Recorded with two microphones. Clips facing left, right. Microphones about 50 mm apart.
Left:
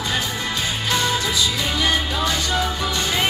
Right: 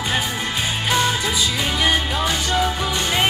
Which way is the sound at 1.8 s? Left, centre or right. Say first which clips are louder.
Right 2 dB; centre.